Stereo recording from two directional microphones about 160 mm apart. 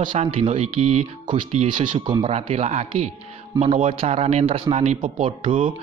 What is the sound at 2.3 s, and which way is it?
Speech, 40° right (ahead or behind).